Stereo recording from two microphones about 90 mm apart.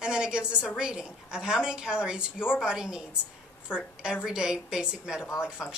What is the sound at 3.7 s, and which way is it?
Speech, 20° left (ahead or behind).